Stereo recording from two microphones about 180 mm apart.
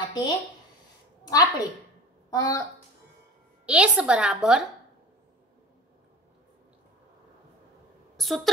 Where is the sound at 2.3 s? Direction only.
20° left (ahead or behind).